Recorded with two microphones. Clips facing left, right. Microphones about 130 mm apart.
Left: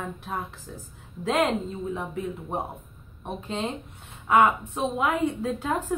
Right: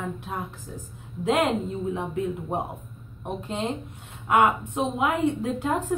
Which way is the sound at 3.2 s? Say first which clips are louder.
Right 1 dB; 15° right (ahead or behind).